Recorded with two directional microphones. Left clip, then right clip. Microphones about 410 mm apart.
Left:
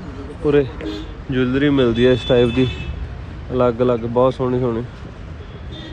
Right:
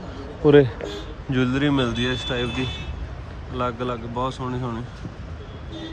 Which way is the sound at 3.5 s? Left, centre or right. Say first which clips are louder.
Left 10 dB; centre.